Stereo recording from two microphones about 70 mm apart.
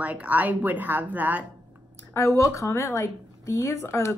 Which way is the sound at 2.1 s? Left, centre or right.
Left.